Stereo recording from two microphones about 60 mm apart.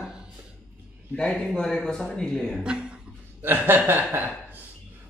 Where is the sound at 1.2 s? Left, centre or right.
Centre.